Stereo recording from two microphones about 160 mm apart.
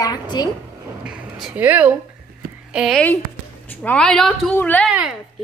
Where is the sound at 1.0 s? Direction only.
5° right (ahead or behind).